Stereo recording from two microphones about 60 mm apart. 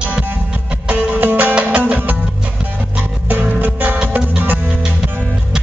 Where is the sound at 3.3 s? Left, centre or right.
Right.